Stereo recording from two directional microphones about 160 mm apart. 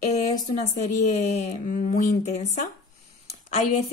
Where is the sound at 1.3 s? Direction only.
50° left (ahead or behind).